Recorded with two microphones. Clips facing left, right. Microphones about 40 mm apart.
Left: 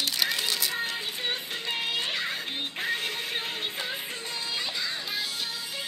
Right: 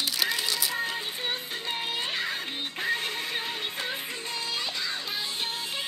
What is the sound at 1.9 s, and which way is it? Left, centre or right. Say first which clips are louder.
Music: left 1 dB; left.